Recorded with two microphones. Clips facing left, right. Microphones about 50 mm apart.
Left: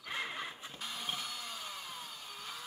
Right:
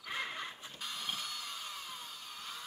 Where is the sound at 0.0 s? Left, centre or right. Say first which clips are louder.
Even; centre.